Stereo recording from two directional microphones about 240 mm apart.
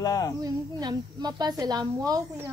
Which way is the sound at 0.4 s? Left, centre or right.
Centre.